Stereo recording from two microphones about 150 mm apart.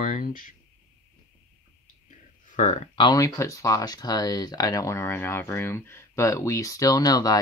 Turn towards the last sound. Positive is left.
turn(degrees=25)  # may be behind; listen again after turning